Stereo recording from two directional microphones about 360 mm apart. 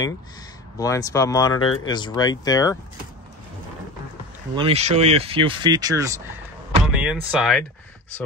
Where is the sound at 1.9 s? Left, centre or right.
Centre.